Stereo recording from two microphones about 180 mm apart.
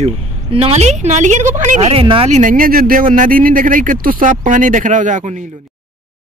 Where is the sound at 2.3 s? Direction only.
50° right (ahead or behind).